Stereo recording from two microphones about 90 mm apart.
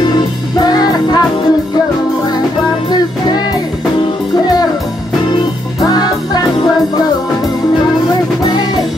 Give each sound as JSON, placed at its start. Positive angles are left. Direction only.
{"t": 0.6, "sound": "music", "side_deg": 45}
{"t": 5.8, "sound": "music", "side_deg": 45}
{"t": 8.5, "sound": "music", "side_deg": 50}